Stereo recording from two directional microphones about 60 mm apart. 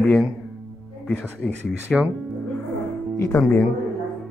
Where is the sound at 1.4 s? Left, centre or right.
Centre.